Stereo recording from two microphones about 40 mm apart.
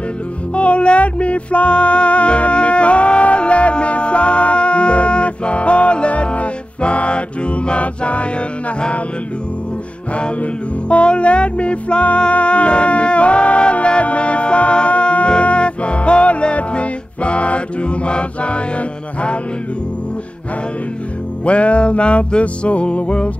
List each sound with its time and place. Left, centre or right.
0.6 s music: left
10.1 s music: left
21.5 s music: left